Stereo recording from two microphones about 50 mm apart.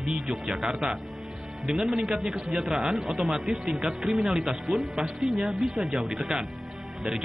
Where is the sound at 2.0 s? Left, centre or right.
Centre.